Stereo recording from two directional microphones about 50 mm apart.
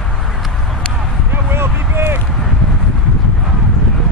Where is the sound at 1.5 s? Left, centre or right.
Right.